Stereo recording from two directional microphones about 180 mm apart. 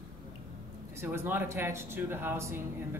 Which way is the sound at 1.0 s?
15° right (ahead or behind).